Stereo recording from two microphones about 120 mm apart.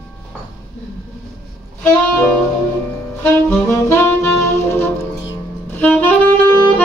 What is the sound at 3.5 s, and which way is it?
Saxophone, 20° left (ahead or behind).